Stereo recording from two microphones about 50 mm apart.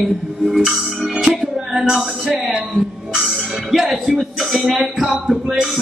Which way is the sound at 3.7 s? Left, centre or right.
Centre.